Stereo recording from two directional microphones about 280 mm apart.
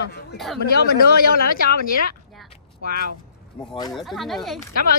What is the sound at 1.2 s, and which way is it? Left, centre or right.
Speech, left.